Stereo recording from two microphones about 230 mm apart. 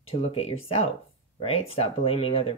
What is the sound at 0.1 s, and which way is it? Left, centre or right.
Speech, left.